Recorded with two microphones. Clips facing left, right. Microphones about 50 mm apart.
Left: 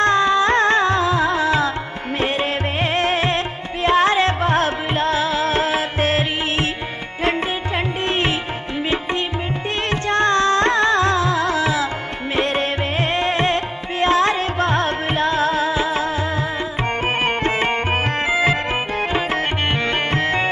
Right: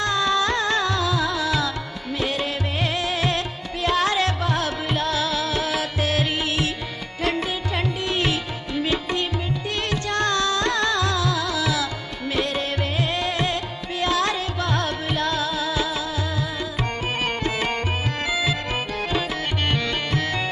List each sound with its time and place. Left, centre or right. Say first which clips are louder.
0.0 s music: left 6 dB; left
17.2 s music: left 4 dB; left
19.7 s music: left 4 dB; left